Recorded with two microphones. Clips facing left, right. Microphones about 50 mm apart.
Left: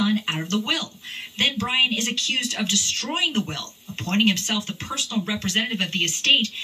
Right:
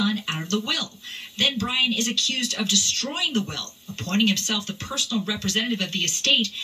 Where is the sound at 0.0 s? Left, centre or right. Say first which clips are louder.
Left 2 dB; left.